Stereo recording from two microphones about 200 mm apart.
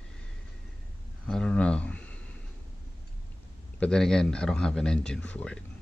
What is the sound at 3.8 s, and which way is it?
A man's voice, 5° left (ahead or behind).